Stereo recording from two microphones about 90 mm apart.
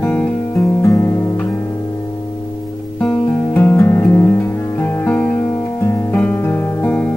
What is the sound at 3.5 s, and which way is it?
Music, 25° left (ahead or behind).